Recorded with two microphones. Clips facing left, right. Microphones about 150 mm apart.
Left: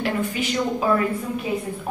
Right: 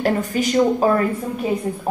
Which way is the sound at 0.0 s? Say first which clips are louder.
Right 5 dB; 40° right (ahead or behind).